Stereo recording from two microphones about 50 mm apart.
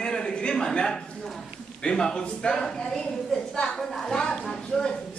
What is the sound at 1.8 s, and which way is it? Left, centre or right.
A man's voice, left.